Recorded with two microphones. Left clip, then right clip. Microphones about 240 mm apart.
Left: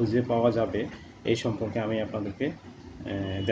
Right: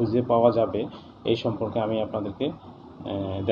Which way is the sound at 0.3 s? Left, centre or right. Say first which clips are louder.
Right 7 dB; left.